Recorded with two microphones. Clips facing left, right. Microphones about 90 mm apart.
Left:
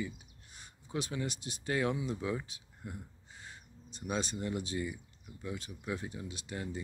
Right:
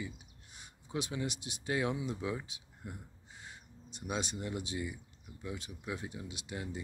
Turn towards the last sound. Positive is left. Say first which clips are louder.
# left 1 dB
turn(degrees=-10)  # may be behind; listen again after turning